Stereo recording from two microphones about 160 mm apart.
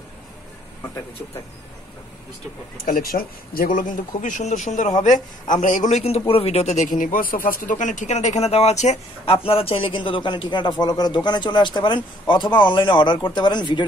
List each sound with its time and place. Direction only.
2.8 s a man's voice: 60° left (ahead or behind); by 13.8 s 30° left (ahead or behind)